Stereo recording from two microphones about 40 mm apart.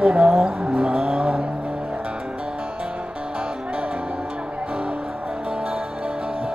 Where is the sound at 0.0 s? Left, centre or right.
Right.